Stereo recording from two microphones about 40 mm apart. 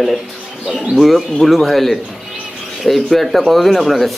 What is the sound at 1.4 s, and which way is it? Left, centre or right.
Speech, centre.